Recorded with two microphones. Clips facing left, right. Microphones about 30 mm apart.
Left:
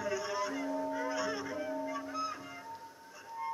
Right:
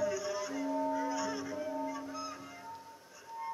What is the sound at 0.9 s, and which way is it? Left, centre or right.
Honk, centre.